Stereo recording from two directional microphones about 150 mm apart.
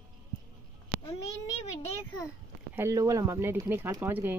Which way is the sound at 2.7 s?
20° right (ahead or behind).